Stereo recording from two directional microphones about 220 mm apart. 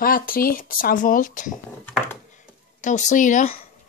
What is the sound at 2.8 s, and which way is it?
Speech, 35° left (ahead or behind).